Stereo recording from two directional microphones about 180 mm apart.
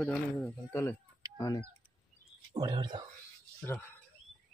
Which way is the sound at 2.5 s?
25° right (ahead or behind).